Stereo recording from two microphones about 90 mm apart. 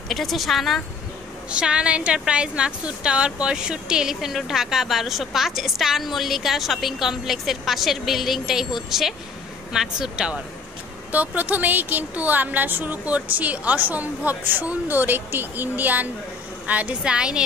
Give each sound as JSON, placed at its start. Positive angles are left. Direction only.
{"t": 0.1, "sound": "a woman's voice", "side_deg": 0}
{"t": 1.5, "sound": "a woman's voice", "side_deg": -10}